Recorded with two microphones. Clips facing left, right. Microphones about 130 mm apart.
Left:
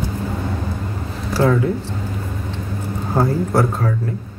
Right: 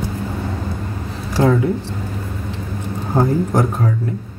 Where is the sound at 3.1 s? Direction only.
15° right (ahead or behind).